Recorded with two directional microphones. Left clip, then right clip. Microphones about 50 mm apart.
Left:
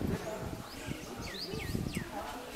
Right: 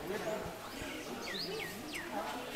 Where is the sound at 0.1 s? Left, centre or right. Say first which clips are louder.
Right 1 dB; right.